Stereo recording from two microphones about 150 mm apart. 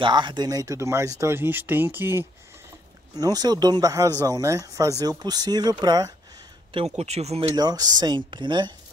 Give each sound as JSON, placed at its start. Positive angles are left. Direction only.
{"t": 0.0, "sound": "speech", "side_deg": -30}
{"t": 3.2, "sound": "speech", "side_deg": -25}
{"t": 7.0, "sound": "speech", "side_deg": -45}
{"t": 7.5, "sound": "speech", "side_deg": -25}